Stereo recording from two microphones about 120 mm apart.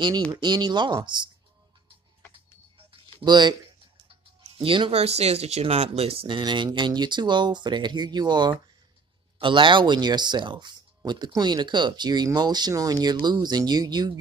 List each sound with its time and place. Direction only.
0.3 s speech: 35° right (ahead or behind)
2.9 s a sound: 40° right (ahead or behind)
4.6 s speech: 45° right (ahead or behind)
5.0 s speech: 60° right (ahead or behind); by 14.1 s 35° right (ahead or behind)